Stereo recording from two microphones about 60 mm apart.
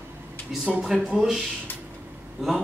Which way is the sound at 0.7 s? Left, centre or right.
Centre.